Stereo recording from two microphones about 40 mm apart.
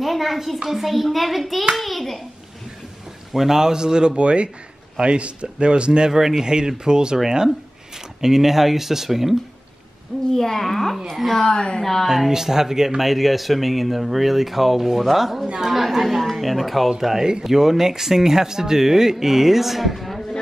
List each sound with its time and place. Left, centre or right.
0.0 s speech: centre
3.3 s speech: centre
8.2 s speech: centre
10.3 s speech: centre
11.4 s a woman's voice: left
11.8 s speech: centre
12.1 s speech: centre
17.2 s speech: centre